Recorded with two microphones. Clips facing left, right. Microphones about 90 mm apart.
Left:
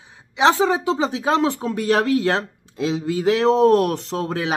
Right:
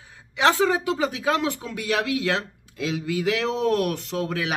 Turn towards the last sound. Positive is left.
turn(degrees=30)  # may be behind; listen again after turning